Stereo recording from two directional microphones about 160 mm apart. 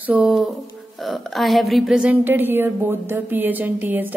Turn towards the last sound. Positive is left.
turn(degrees=-10)  # may be behind; listen again after turning